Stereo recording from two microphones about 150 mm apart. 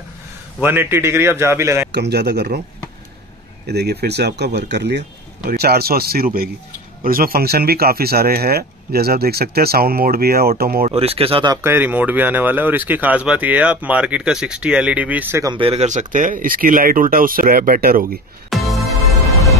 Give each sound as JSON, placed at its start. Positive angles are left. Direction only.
{"t": 0.6, "sound": "speech", "side_deg": -15}
{"t": 1.9, "sound": "speech", "side_deg": -90}
{"t": 3.6, "sound": "speech", "side_deg": -90}
{"t": 10.9, "sound": "speech", "side_deg": -40}
{"t": 11.5, "sound": "speech", "side_deg": -15}
{"t": 15.4, "sound": "speech", "side_deg": -35}
{"t": 18.5, "sound": "music", "side_deg": 0}